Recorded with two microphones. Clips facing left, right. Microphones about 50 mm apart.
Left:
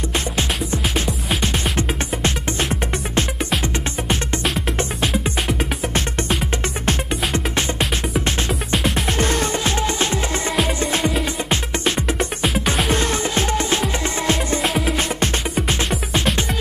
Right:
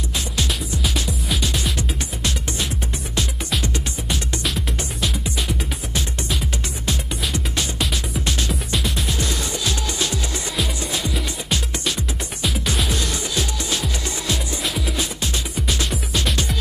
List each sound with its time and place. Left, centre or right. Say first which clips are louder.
1.4 s music: left 3 dB; left
6.9 s music: left 4 dB; left
9.2 s music: left 6 dB; left
11.4 s music: left 4 dB; left